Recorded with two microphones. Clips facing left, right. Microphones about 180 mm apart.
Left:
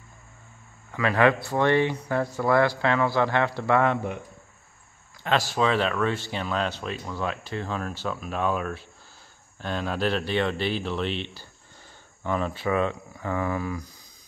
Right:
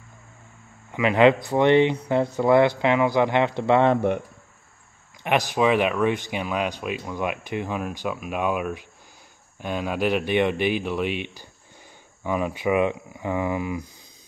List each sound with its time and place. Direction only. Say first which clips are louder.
0.9 s speech: right 4 dB; 20° right (ahead or behind)
5.2 s speech: right 3 dB; 15° right (ahead or behind)